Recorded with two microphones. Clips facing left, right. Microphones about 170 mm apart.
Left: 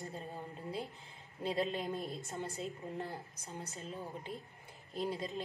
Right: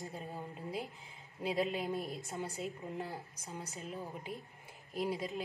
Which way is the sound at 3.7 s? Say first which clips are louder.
Right 2 dB; 15° right (ahead or behind).